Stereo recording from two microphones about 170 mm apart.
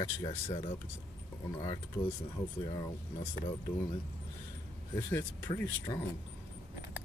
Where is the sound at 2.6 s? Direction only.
30° left (ahead or behind).